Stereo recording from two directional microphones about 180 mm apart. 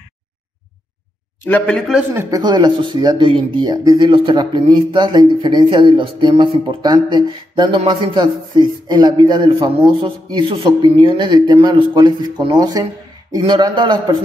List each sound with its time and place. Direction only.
1.4 s speech: 10° left (ahead or behind)
2.1 s speech: 20° right (ahead or behind)